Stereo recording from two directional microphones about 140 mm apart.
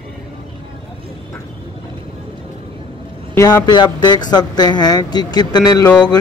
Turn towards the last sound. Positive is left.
turn(degrees=30)  # may be behind; listen again after turning